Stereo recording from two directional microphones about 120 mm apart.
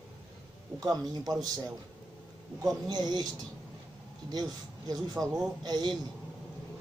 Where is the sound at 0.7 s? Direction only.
30° right (ahead or behind).